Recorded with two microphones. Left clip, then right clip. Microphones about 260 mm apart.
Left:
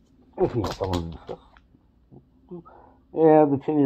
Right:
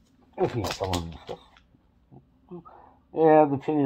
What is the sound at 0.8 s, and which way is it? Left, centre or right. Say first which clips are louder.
Speech: left 1 dB; centre.